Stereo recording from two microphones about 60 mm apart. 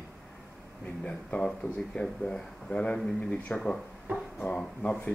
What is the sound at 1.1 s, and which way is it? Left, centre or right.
Speech, centre.